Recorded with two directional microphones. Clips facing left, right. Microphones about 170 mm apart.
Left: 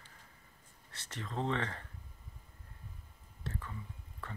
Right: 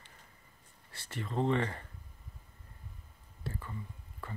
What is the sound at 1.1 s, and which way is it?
Speech, 5° right (ahead or behind).